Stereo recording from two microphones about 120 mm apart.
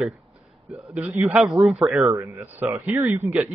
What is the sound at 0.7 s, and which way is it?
A man's voice, 10° right (ahead or behind).